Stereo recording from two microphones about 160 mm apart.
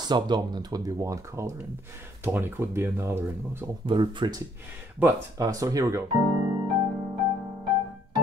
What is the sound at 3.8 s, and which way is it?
Speech, 30° right (ahead or behind).